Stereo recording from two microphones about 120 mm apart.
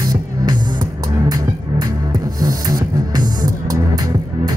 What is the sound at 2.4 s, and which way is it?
Music, 35° right (ahead or behind).